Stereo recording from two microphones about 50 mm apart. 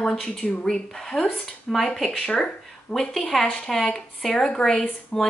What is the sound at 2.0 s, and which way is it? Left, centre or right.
Speech, left.